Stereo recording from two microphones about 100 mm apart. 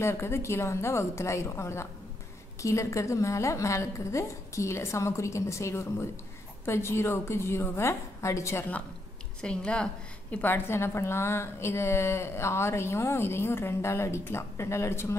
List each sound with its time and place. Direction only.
0.0 s a woman's voice: 25° left (ahead or behind)
9.4 s a woman's voice: 10° left (ahead or behind)
10.3 s a woman's voice: 20° left (ahead or behind)